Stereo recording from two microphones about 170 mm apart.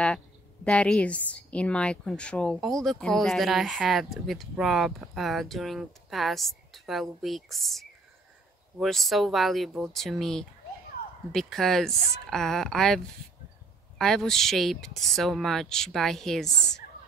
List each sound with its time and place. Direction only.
0.7 s a woman's voice: 5° left (ahead or behind)